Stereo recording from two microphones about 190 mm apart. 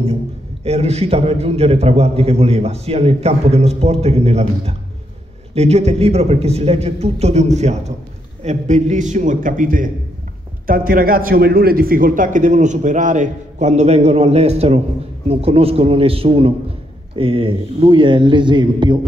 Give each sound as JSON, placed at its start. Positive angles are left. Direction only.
{"t": 0.7, "sound": "a man's voice", "side_deg": -35}